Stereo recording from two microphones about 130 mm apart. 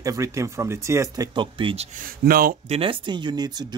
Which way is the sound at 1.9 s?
90° right.